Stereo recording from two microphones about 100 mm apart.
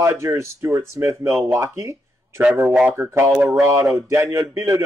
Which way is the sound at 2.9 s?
25° right (ahead or behind).